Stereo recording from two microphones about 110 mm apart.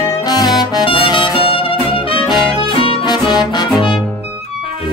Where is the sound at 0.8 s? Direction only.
50° left (ahead or behind).